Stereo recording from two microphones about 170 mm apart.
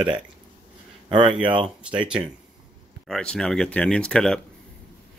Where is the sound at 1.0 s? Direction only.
30° right (ahead or behind).